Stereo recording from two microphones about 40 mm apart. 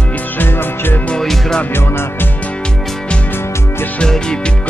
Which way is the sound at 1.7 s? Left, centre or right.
Left.